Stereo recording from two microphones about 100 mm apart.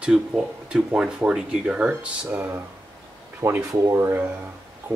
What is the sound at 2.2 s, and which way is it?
Speech, 25° right (ahead or behind).